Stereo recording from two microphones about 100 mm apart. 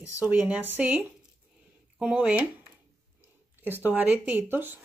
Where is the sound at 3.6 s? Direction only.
20° right (ahead or behind).